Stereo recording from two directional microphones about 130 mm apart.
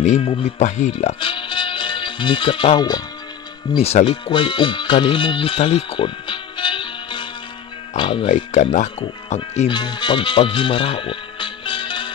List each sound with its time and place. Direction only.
0.2 s speech: 40° left (ahead or behind)
0.6 s speech: 60° left (ahead or behind)
1.2 s music: 40° left (ahead or behind)
3.7 s speech: 50° left (ahead or behind)
4.0 s speech: 40° left (ahead or behind)
8.5 s speech: 60° left (ahead or behind)
9.7 s speech: 35° left (ahead or behind)